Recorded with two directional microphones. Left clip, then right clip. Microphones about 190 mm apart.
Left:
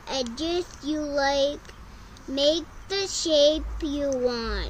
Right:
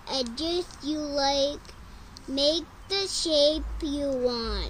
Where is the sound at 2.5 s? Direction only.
30° right (ahead or behind).